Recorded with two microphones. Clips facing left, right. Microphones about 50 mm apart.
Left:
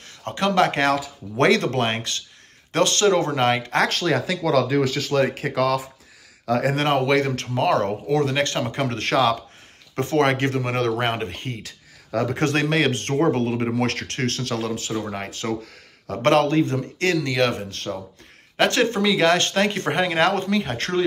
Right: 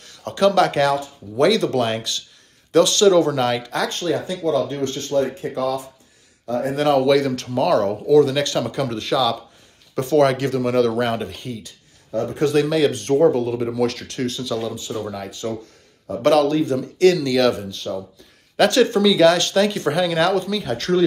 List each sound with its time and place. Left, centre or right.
0.0 s speech: left
1.4 s speech: left
3.9 s speech: left
6.8 s speech: left
8.9 s speech: left
9.9 s speech: left
11.6 s a sound: left
12.4 s speech: left
15.0 s speech: left
15.2 s speech: left
16.2 s speech: left
17.6 s speech: left
18.6 s speech: left